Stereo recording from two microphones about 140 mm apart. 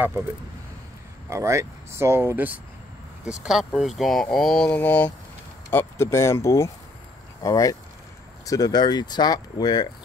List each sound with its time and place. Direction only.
1.3 s speech: 20° right (ahead or behind); by 9.8 s 30° left (ahead or behind)